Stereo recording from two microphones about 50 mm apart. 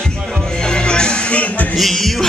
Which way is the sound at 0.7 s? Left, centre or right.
Centre.